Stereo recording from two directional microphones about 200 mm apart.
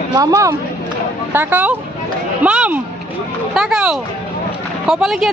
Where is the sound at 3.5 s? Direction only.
Centre (ahead or behind).